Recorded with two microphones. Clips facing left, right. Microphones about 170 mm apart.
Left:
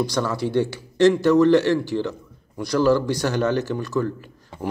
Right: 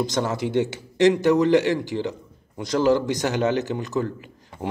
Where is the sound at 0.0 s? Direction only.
20° right (ahead or behind).